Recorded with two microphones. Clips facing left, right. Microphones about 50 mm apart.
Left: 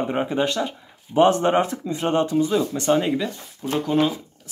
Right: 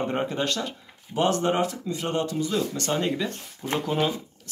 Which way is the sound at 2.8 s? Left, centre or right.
Centre.